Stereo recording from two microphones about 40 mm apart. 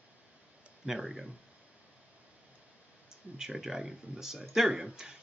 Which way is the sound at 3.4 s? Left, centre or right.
Centre.